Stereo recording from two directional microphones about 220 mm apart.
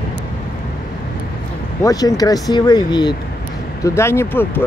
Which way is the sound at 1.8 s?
15° left (ahead or behind).